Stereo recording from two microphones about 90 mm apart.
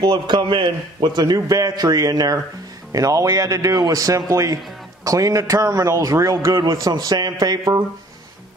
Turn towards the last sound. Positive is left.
turn(degrees=-50)  # may be behind; listen again after turning